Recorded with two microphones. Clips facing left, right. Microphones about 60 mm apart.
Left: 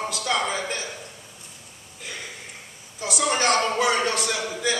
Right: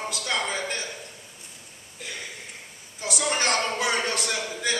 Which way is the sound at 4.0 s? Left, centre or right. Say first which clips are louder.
Left 3 dB; left.